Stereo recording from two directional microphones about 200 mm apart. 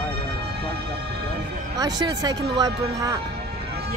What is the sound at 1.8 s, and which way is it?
Speech, 20° right (ahead or behind).